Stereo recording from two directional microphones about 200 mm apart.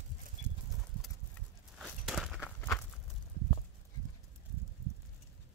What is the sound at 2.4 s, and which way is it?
Walk, 10° left (ahead or behind).